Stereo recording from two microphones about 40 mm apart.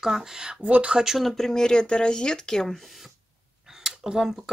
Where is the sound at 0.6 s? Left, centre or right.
Right.